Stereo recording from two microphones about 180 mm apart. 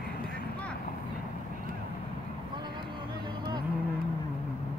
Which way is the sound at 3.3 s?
25° right (ahead or behind).